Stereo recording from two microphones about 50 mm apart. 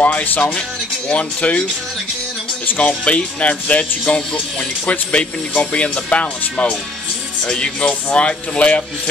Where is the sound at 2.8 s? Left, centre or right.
Left.